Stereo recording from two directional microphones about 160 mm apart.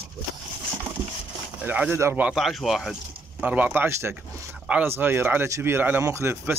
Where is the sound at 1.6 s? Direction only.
10° right (ahead or behind).